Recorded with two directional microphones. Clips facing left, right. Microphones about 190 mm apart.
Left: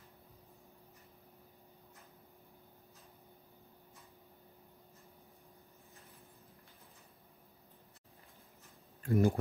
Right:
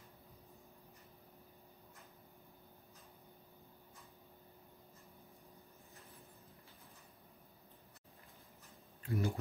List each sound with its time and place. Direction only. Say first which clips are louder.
9.0 s speech: left 8 dB; 50° left (ahead or behind)